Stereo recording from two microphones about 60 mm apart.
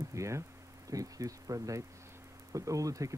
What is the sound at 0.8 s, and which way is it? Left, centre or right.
Speech, right.